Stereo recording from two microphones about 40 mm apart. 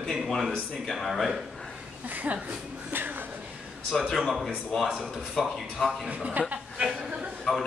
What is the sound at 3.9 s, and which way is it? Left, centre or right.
Speech, centre.